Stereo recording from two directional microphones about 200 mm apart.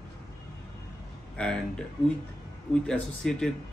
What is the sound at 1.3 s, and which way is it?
Speech, 5° left (ahead or behind).